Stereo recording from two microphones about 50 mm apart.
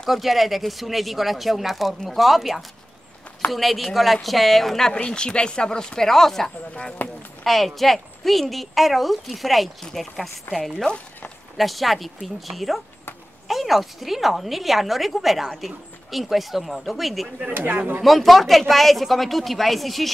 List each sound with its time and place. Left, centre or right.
0.1 s a woman's voice: centre
6.7 s speech: left
7.4 s a woman's voice: centre
11.5 s a woman's voice: centre
17.6 s speech: right
18.0 s a woman's voice: centre